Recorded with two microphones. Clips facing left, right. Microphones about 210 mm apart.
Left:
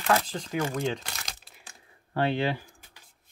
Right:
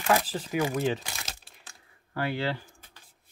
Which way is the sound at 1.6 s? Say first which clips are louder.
Left 2 dB; 20° left (ahead or behind).